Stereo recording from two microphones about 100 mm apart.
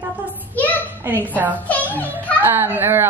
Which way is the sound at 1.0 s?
20° right (ahead or behind).